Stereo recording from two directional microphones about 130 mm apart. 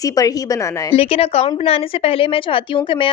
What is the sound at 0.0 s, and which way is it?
Speech, 25° left (ahead or behind).